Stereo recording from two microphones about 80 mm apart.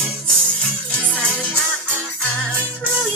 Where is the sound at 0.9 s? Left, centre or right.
Centre.